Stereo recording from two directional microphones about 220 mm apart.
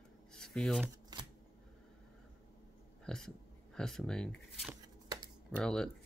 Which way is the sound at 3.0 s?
5° left (ahead or behind).